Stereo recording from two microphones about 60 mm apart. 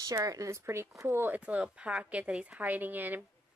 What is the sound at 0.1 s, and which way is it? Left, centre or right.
Speech, right.